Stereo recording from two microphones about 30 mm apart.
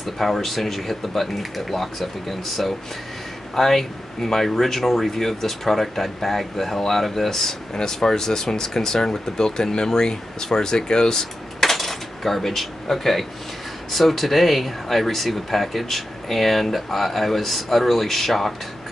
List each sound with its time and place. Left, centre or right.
0.0 s speech: centre; by 11.2 s left
11.6 s a sound: centre
13.9 s speech: centre